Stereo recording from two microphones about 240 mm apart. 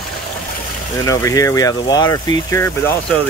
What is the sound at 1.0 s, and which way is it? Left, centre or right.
Speech, centre.